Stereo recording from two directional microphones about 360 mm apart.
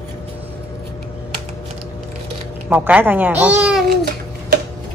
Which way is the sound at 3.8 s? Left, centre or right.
Right.